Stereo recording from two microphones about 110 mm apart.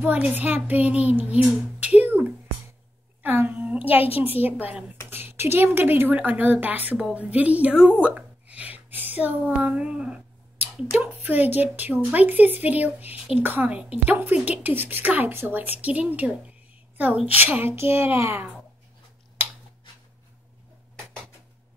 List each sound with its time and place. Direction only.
0.0 s a child's voice: 15° right (ahead or behind)
3.2 s a sound: 15° right (ahead or behind)
4.2 s a woman's voice: 15° right (ahead or behind)